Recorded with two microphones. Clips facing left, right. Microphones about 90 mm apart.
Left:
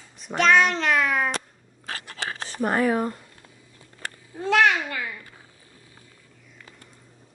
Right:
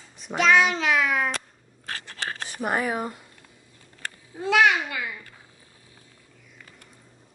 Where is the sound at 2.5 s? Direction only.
10° right (ahead or behind).